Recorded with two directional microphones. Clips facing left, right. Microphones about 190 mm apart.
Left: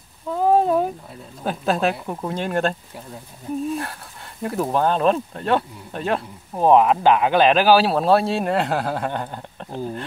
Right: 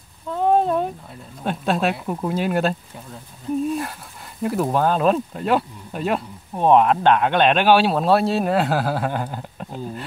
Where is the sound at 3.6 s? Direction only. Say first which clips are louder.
Right 2 dB; centre (ahead or behind).